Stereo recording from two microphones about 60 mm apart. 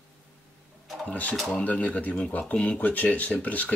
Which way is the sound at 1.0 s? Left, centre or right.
Left.